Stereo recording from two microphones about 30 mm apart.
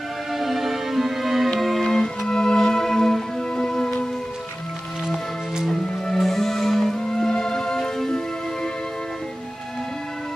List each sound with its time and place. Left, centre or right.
0.3 s music: centre
1.8 s music: centre
2.2 s music: left
5.7 s music: centre